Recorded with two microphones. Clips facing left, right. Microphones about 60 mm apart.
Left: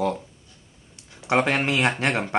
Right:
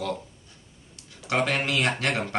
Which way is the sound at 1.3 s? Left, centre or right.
Left.